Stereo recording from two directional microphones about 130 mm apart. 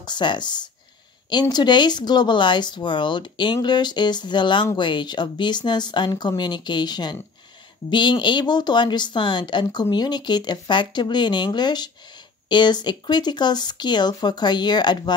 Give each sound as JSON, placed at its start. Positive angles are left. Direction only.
{"t": 0.0, "sound": "speech", "side_deg": 35}